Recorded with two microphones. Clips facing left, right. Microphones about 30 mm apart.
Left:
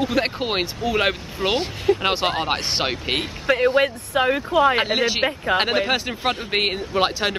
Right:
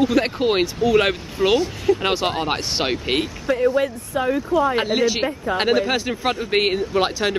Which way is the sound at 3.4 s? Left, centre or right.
Left.